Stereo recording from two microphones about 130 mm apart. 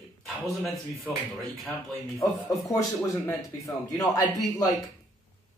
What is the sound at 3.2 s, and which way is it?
Speech, 25° left (ahead or behind).